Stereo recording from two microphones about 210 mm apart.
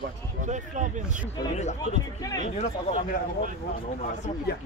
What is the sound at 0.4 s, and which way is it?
Speech, 35° right (ahead or behind).